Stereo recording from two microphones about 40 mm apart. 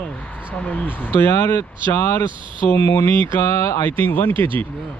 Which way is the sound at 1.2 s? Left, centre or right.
Left.